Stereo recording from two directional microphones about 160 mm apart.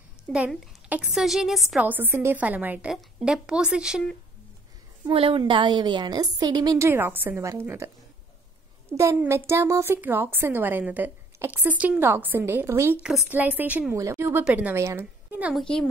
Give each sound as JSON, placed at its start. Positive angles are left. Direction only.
{"t": 0.3, "sound": "a woman's voice", "side_deg": -5}
{"t": 1.9, "sound": "a woman's voice", "side_deg": -15}
{"t": 5.1, "sound": "a woman's voice", "side_deg": -35}
{"t": 8.9, "sound": "a woman's voice", "side_deg": -15}
{"t": 13.0, "sound": "a woman's voice", "side_deg": -5}
{"t": 15.6, "sound": "a woman's voice", "side_deg": 5}